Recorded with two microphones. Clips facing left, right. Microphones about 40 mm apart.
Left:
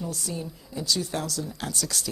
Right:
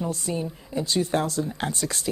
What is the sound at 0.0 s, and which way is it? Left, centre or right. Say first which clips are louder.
Speech: right 5 dB; right.